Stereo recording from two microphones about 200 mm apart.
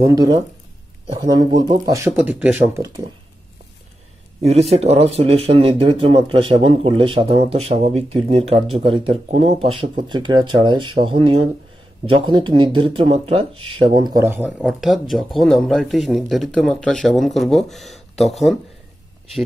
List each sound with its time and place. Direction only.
0.0 s speech: 15° right (ahead or behind)
4.5 s speech: 30° right (ahead or behind); by 14.5 s 10° right (ahead or behind)
14.6 s speech: centre (ahead or behind)